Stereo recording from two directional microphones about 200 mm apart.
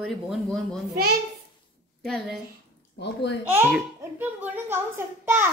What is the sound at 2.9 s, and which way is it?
Speech, 60° left (ahead or behind).